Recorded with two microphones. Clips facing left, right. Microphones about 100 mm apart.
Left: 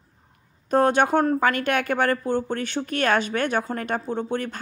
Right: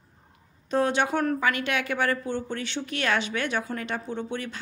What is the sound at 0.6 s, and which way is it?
A woman's voice, 45° left (ahead or behind).